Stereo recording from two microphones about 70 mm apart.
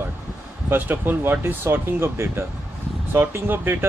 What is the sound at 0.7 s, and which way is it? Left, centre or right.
Speech, right.